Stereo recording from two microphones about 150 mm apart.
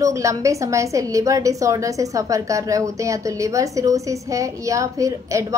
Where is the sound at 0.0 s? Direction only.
20° right (ahead or behind).